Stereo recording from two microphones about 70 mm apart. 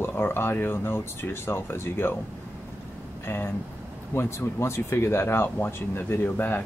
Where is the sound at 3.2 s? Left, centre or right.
Left.